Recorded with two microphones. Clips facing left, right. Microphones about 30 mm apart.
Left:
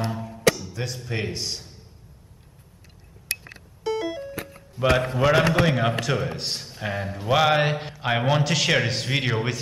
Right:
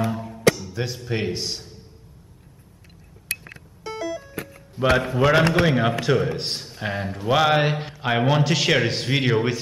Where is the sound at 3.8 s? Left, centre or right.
Left.